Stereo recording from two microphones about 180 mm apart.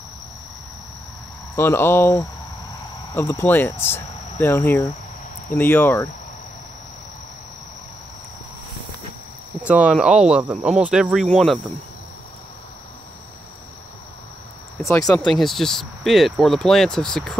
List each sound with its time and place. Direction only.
1.5 s speech: 15° left (ahead or behind)
9.6 s speech: 5° right (ahead or behind)
15.0 s speech: centre (ahead or behind)